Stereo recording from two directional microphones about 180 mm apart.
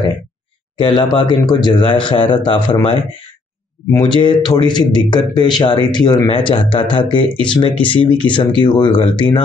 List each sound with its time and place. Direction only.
0.7 s a man's voice: 25° left (ahead or behind)